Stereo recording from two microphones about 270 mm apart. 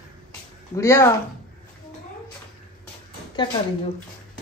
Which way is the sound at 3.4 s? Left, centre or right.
Centre.